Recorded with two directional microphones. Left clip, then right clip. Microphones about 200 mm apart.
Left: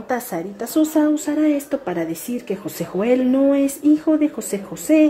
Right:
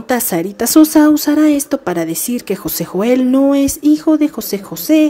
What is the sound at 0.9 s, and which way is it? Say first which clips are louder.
Speech: right 8 dB; 25° right (ahead or behind).